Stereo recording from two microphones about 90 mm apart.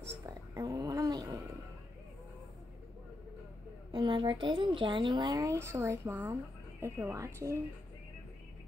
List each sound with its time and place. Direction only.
0.3 s a sound: 40° right (ahead or behind)
3.9 s speech: 55° right (ahead or behind)
5.4 s speech: 35° right (ahead or behind)